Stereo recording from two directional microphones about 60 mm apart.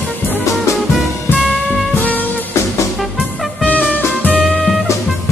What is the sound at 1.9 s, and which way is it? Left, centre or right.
Music, left.